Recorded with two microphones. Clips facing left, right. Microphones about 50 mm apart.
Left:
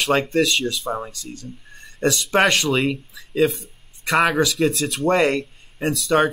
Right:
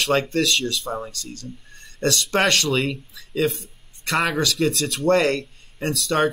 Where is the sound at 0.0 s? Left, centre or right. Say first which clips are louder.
Left 2 dB; centre.